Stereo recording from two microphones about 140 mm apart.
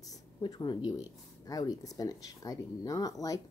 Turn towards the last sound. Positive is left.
turn(degrees=25)  # may be behind; listen again after turning